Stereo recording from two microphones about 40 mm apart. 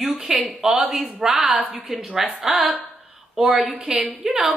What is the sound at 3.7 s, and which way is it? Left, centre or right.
Speech, right.